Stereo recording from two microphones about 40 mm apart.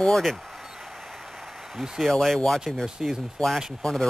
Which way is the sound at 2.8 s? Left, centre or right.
Centre.